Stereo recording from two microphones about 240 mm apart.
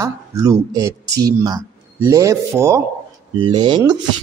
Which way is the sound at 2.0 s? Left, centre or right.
Centre.